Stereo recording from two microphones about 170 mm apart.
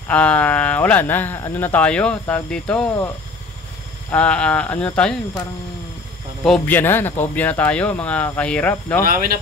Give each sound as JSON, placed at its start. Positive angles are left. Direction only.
{"t": 0.1, "sound": "speech", "side_deg": 10}
{"t": 4.1, "sound": "speech", "side_deg": 5}
{"t": 6.4, "sound": "speech", "side_deg": 5}
{"t": 9.0, "sound": "speech", "side_deg": -60}